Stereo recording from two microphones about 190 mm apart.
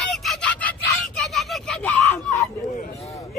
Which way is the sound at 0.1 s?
Centre (ahead or behind).